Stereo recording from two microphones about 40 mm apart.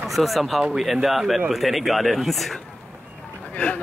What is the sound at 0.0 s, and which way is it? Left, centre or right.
Speech, centre.